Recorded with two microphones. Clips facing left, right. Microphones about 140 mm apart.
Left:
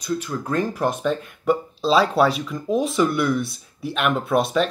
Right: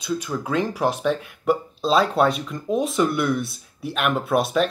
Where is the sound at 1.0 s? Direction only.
5° right (ahead or behind).